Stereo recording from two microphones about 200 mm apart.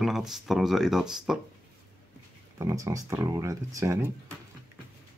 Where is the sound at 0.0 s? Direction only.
Centre (ahead or behind).